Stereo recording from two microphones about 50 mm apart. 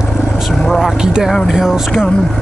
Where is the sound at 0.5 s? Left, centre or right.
Centre.